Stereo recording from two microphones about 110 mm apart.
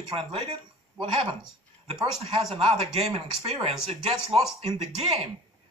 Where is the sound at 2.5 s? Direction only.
70° right (ahead or behind).